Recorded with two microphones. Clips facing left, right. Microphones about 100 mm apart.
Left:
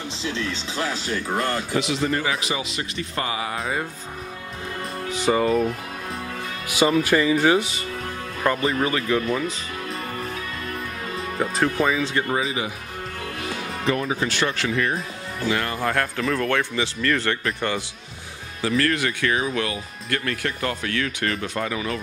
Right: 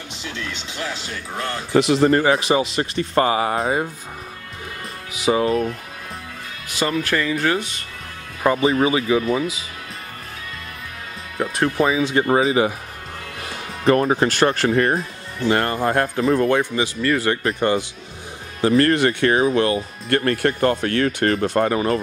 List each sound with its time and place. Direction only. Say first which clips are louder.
0.2 s speech: left 3 dB; 35° left (ahead or behind)
1.7 s a man's voice: right 8 dB; 50° right (ahead or behind)
5.1 s speech: right 1 dB; 5° right (ahead or behind)
6.8 s speech: left 3 dB; 10° left (ahead or behind)
8.5 s speech: right 5 dB; 10° right (ahead or behind)
11.3 s speech: right 3 dB; centre (ahead or behind)
12.0 s speech: right 5 dB; 15° right (ahead or behind)
12.3 s speech: right 8 dB; 35° right (ahead or behind)
13.8 s a man's voice: right 8 dB; 50° right (ahead or behind)
15.8 s speech: right 4 dB; 25° right (ahead or behind)
16.4 s speech: right 4 dB; 15° right (ahead or behind)
18.6 s a man's voice: right 6 dB; 40° right (ahead or behind)